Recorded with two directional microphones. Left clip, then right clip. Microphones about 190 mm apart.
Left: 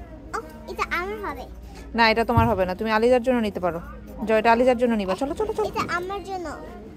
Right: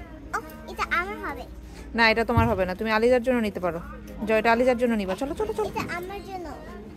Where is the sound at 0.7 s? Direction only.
5° right (ahead or behind).